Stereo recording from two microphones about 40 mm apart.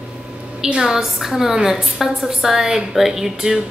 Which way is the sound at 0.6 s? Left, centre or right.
Centre.